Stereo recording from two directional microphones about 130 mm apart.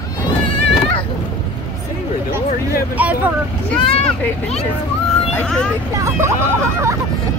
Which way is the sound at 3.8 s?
45° left (ahead or behind).